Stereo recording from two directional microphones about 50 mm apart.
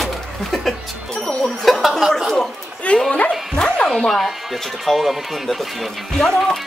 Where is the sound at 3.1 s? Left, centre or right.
Left.